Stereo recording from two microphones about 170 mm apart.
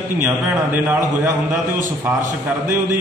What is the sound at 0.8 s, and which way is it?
Speech, 15° right (ahead or behind).